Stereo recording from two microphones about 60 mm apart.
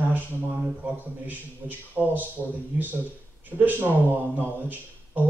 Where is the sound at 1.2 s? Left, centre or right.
Right.